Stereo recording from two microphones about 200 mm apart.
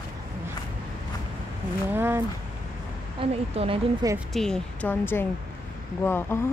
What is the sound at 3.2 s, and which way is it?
Speech, 30° right (ahead or behind).